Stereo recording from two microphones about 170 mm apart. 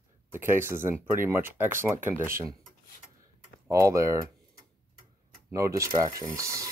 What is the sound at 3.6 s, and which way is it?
Speech, 20° right (ahead or behind).